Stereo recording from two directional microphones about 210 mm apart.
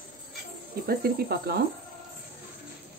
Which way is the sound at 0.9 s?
45° right (ahead or behind).